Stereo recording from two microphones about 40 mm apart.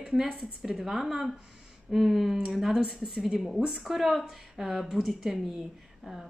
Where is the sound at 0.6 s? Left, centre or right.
Centre.